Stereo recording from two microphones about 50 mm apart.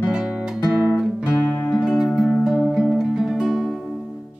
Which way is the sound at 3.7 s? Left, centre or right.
Centre.